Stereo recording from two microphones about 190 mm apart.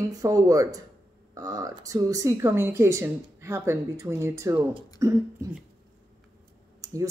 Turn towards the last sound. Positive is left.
turn(degrees=-15)  # may be behind; listen again after turning